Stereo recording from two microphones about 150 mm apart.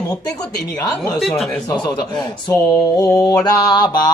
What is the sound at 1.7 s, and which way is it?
Mantra, 30° left (ahead or behind).